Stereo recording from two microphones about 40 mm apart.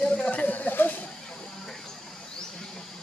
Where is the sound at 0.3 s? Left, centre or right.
Left.